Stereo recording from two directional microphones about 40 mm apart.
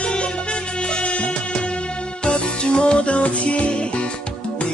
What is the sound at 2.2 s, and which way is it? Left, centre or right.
Music, left.